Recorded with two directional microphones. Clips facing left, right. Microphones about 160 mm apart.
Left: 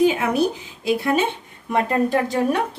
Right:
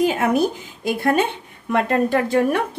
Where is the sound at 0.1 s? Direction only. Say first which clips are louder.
Right 2 dB; 45° right (ahead or behind).